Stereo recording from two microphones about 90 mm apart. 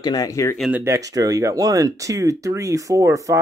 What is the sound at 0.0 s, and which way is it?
Speech, 50° left (ahead or behind).